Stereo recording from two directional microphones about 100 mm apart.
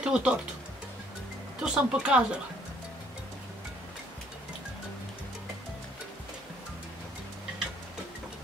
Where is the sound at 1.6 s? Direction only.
10° right (ahead or behind).